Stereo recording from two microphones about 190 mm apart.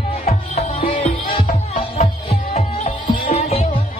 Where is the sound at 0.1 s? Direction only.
35° left (ahead or behind).